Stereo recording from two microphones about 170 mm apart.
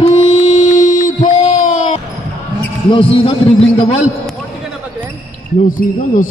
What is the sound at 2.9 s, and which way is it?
A man's voice, 30° left (ahead or behind).